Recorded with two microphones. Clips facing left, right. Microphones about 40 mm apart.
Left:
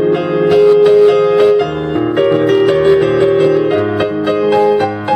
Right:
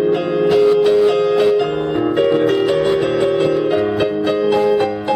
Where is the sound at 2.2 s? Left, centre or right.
Left.